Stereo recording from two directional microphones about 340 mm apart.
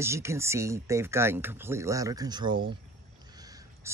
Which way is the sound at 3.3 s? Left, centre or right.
Centre.